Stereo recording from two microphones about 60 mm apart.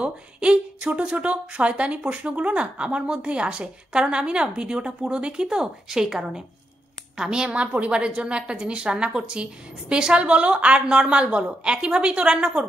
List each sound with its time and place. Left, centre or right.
0.0 s a woman's voice: centre